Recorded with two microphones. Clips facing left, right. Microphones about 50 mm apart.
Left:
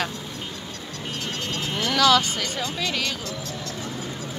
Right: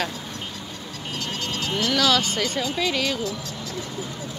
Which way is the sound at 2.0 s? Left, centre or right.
Centre.